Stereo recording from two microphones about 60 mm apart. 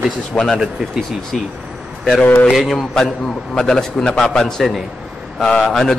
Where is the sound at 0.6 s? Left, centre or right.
Centre.